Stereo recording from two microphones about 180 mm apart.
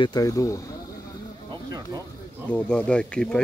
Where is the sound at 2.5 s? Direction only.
5° left (ahead or behind).